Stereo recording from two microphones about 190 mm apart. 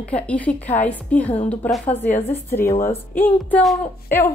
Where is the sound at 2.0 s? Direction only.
35° left (ahead or behind).